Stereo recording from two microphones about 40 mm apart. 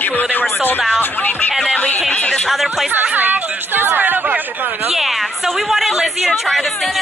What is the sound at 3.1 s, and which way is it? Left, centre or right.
Speech, right.